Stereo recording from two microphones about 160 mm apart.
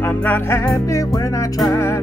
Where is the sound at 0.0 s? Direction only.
15° left (ahead or behind).